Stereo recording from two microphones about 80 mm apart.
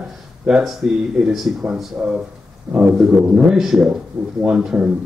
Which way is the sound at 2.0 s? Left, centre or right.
Centre.